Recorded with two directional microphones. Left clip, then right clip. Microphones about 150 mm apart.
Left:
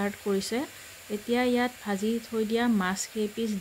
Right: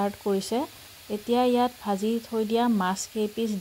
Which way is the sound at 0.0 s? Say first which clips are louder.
Right 3 dB; 10° right (ahead or behind).